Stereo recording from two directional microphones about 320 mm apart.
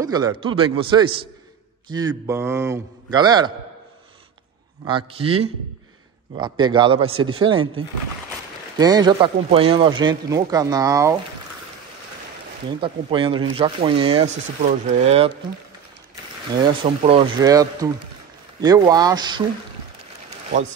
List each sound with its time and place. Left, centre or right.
0.0 s speech: centre
4.8 s speech: centre
8.7 s speech: centre
12.8 s speech: centre
17.0 s speech: centre